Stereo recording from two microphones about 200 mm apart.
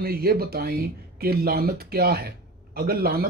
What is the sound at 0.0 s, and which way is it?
Speech, 50° right (ahead or behind).